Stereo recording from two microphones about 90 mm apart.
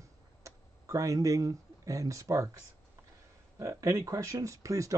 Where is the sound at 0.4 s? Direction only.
35° right (ahead or behind).